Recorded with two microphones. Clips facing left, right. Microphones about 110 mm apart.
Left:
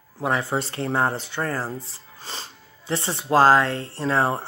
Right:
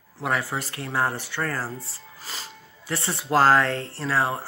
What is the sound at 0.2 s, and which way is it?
Speech, 25° left (ahead or behind).